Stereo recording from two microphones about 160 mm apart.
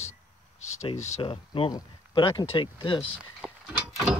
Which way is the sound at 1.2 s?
35° left (ahead or behind).